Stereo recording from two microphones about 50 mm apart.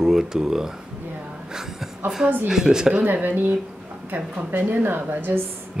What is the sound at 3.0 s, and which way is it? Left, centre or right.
Speech, right.